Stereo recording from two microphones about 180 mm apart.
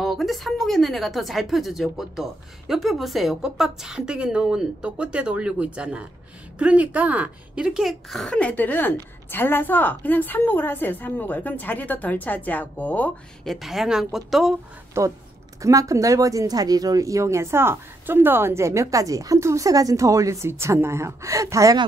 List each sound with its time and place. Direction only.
0.0 s a woman's voice: centre (ahead or behind)
15.0 s speech: 15° right (ahead or behind)